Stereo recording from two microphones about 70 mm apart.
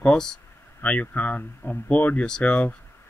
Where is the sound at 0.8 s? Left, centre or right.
Left.